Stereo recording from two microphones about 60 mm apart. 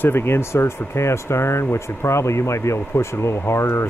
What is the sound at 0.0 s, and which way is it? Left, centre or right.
Speech, left.